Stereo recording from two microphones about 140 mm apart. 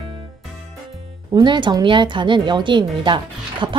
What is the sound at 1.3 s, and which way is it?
A woman's voice, 35° right (ahead or behind).